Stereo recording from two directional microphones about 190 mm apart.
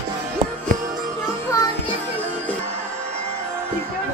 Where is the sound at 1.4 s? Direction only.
15° left (ahead or behind).